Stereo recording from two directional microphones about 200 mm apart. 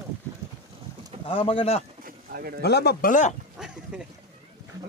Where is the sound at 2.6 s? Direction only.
55° left (ahead or behind).